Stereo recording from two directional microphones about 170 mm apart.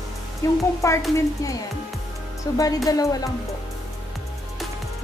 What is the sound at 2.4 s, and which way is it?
Speech, 20° left (ahead or behind).